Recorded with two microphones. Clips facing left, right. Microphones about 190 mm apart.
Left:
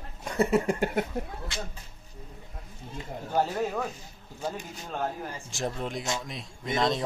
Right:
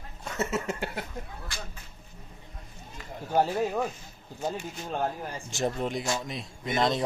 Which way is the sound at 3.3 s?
15° right (ahead or behind).